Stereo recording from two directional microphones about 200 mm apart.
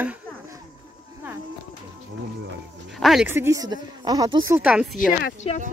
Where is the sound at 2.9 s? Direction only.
Centre (ahead or behind).